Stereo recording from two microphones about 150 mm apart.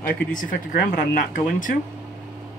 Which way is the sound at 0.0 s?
60° left (ahead or behind).